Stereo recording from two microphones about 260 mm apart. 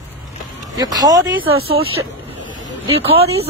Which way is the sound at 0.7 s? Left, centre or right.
Centre.